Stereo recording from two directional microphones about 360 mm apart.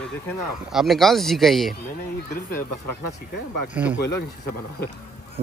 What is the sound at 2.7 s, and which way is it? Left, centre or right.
Speech, left.